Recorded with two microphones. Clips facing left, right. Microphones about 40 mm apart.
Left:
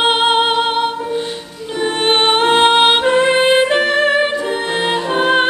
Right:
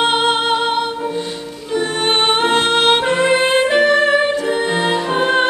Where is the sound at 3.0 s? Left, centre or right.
Centre.